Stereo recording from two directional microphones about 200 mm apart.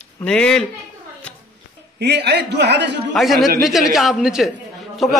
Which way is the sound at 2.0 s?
55° right (ahead or behind).